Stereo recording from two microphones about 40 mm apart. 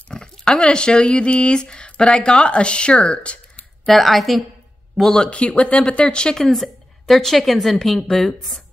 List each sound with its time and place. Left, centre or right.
0.1 s speech: centre
3.8 s speech: centre
5.0 s a woman's voice: centre
5.3 s speech: left
6.3 s a woman's voice: centre